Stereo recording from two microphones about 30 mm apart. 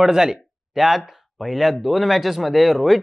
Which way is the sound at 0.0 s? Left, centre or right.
Centre.